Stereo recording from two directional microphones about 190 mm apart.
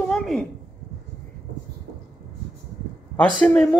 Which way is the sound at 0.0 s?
5° left (ahead or behind).